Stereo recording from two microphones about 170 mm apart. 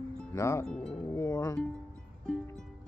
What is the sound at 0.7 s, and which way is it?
Music, 5° left (ahead or behind).